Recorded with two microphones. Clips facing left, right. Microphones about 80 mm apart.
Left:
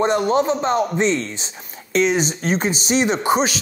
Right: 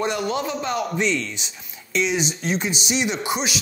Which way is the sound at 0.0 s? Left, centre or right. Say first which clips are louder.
Left 7 dB; left.